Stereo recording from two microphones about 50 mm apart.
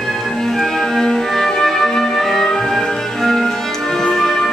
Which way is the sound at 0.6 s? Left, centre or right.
Centre.